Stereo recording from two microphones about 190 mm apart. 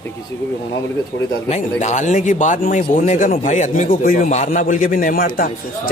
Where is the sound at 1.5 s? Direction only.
35° left (ahead or behind).